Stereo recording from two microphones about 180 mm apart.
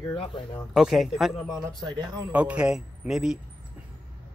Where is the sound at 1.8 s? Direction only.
20° right (ahead or behind).